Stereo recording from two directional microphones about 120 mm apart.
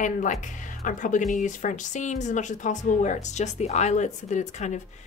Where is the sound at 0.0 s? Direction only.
90° left.